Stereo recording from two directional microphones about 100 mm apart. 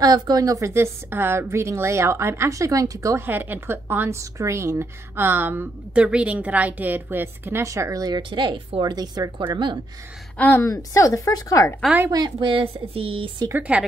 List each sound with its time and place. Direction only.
0.0 s a woman's voice: 40° right (ahead or behind)
3.3 s a woman's voice: 20° right (ahead or behind); by 8.2 s 35° right (ahead or behind)
8.2 s a woman's voice: 55° right (ahead or behind)
10.3 s a woman's voice: 15° left (ahead or behind)
10.6 s a woman's voice: 35° left (ahead or behind)
12.1 s a woman's voice: 50° right (ahead or behind)
13.5 s a woman's voice: 15° right (ahead or behind)